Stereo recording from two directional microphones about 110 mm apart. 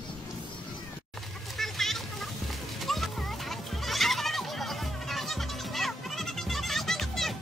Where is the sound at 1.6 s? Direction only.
Centre (ahead or behind).